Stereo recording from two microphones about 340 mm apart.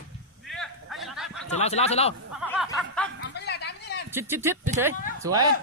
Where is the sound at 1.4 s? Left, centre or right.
Centre.